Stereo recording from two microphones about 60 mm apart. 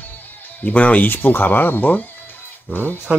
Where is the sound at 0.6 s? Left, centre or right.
Left.